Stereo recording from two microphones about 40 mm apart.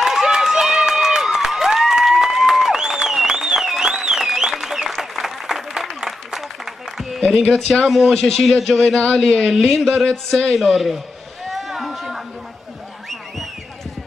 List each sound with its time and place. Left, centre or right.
0.0 s a sound: centre
4.6 s applause: centre
7.2 s speech: centre
7.8 s speech: centre
8.1 s speech: centre
8.5 s speech: centre
8.7 s speech: left
10.3 s speech: centre
11.4 s a sound: centre